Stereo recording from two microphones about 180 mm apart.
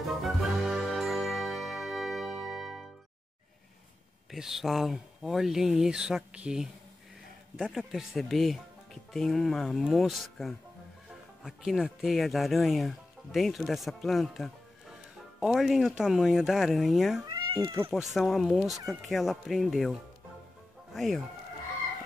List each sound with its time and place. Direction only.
0.1 s ding: centre (ahead or behind)
4.3 s speech: centre (ahead or behind)
17.2 s speech: 20° right (ahead or behind)
17.9 s speech: centre (ahead or behind)